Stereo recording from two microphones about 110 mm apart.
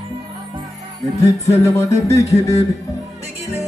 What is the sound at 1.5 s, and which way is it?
A man's voice, 25° left (ahead or behind).